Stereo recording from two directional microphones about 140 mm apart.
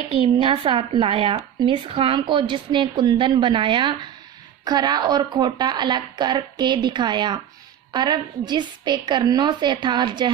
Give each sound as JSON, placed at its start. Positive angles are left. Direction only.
{"t": 0.1, "sound": "speech", "side_deg": -35}